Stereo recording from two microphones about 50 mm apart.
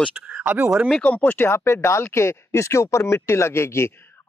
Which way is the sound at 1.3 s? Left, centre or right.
Left.